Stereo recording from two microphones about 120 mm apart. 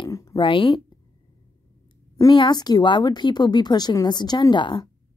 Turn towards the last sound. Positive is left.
turn(degrees=40)  # may be behind; listen again after turning